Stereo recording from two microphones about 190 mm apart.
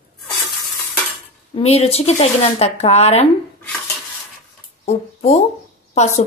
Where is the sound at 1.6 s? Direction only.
30° left (ahead or behind).